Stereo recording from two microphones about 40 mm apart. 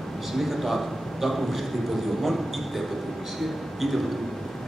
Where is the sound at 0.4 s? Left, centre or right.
Centre.